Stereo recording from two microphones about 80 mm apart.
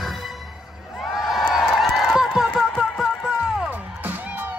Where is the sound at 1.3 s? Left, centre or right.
Centre.